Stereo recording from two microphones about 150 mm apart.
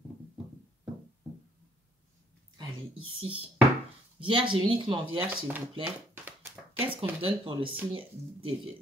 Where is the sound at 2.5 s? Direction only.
30° right (ahead or behind).